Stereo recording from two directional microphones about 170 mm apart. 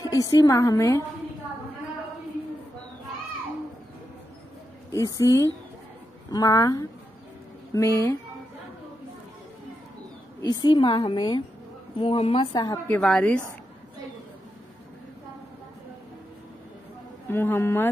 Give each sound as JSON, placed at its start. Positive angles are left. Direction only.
{"t": 0.1, "sound": "a woman's voice", "side_deg": 20}
{"t": 4.9, "sound": "a woman's voice", "side_deg": 20}
{"t": 10.6, "sound": "a woman's voice", "side_deg": 25}
{"t": 12.8, "sound": "a woman's voice", "side_deg": 5}
{"t": 17.3, "sound": "a woman's voice", "side_deg": 15}